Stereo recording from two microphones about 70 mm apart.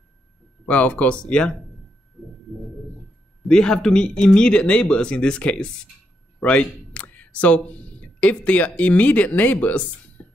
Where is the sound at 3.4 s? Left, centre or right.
Centre.